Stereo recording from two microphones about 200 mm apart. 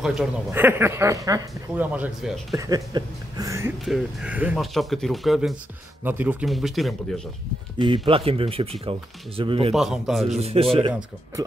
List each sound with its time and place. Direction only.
0.0 s speech: 5° right (ahead or behind)
2.5 s speech: 15° right (ahead or behind)
3.8 s speech: 5° right (ahead or behind)
7.8 s speech: 25° right (ahead or behind)
9.8 s speech: centre (ahead or behind)
10.4 s speech: 30° right (ahead or behind)
10.9 s speech: 10° right (ahead or behind)